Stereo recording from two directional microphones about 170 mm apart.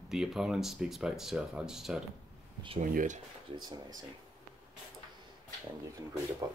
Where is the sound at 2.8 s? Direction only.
50° right (ahead or behind).